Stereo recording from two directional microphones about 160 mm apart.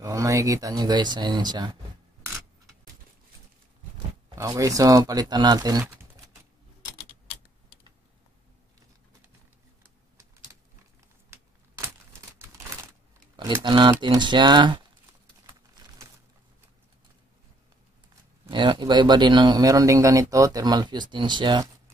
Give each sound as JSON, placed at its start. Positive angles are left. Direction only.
{"t": 0.0, "sound": "a man's voice", "side_deg": -20}
{"t": 4.4, "sound": "a man's voice", "side_deg": -20}
{"t": 13.4, "sound": "a man's voice", "side_deg": -25}
{"t": 18.5, "sound": "a man's voice", "side_deg": -30}